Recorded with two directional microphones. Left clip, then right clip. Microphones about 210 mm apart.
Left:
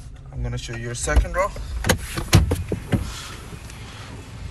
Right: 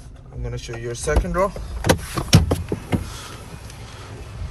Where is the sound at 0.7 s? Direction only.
30° right (ahead or behind).